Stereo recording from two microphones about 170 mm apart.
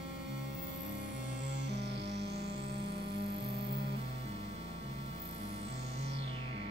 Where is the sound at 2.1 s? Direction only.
80° right.